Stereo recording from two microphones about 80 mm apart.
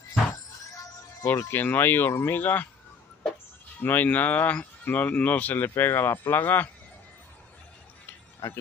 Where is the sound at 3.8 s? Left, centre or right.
Left.